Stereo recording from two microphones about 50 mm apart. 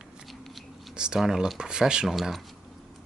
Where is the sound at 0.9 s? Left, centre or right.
Centre.